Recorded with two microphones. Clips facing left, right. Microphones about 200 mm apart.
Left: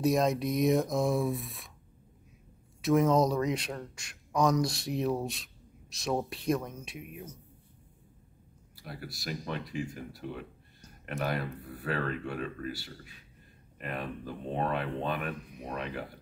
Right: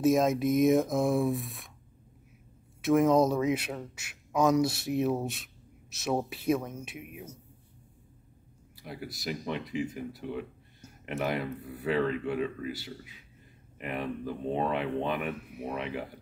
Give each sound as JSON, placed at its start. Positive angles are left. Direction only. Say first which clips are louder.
{"t": 0.0, "sound": "a man's voice", "louder": "right 3 dB", "side_deg": 0}
{"t": 2.8, "sound": "a man's voice", "louder": "right 2 dB", "side_deg": 0}
{"t": 8.8, "sound": "speech", "louder": "right 3 dB", "side_deg": -20}
{"t": 10.8, "sound": "a sound", "louder": "right 2 dB", "side_deg": -10}
{"t": 11.2, "sound": "speech", "louder": "right 2 dB", "side_deg": -20}